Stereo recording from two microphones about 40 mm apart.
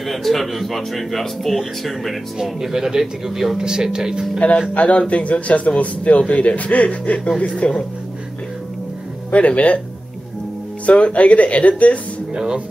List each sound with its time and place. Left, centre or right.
0.0 s speech: centre
2.4 s speech: centre
3.5 s speech: centre
4.7 s a man's voice: left
9.3 s a man's voice: left
10.9 s a man's voice: left
12.4 s speech: right